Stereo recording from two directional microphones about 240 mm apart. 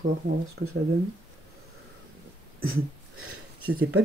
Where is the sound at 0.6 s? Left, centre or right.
Right.